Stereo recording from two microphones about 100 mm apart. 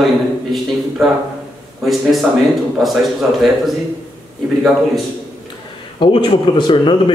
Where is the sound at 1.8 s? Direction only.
Centre (ahead or behind).